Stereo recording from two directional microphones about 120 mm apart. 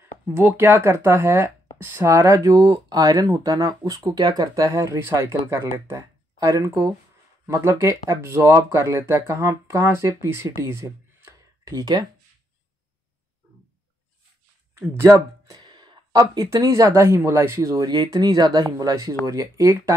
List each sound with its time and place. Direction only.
0.0 s speech: 20° right (ahead or behind)
2.6 s speech: 40° right (ahead or behind)
3.0 s speech: 30° right (ahead or behind)
14.8 s speech: 25° right (ahead or behind)